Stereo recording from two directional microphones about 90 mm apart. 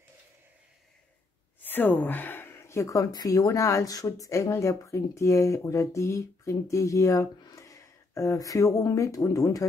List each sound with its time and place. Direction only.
1.6 s speech: 20° left (ahead or behind); by 9.7 s 40° left (ahead or behind)